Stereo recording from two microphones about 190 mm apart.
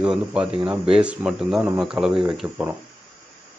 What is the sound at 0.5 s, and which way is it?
Speech, 30° right (ahead or behind).